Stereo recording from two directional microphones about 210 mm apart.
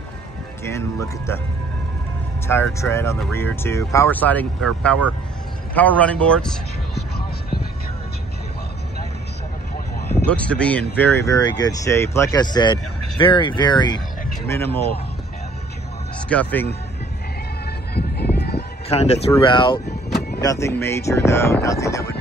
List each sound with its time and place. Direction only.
0.7 s speech: 15° left (ahead or behind)
2.4 s speech: 10° left (ahead or behind)
10.2 s speech: 5° left (ahead or behind)
16.3 s speech: 5° left (ahead or behind)
17.9 s music: 50° left (ahead or behind)
18.9 s speech: 30° left (ahead or behind); by 22.0 s 15° left (ahead or behind)